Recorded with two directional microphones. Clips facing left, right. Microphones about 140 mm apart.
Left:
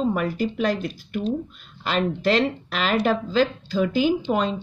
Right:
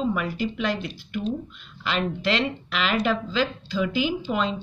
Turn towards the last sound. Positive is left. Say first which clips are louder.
# left 4 dB
turn(degrees=40)  # may be behind; listen again after turning